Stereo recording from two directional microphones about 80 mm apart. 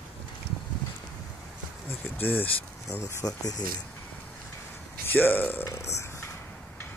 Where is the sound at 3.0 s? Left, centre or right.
Left.